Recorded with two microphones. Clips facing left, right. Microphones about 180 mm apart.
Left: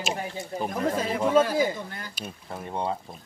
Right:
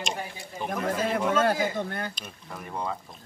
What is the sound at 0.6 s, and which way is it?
Speech, 35° left (ahead or behind).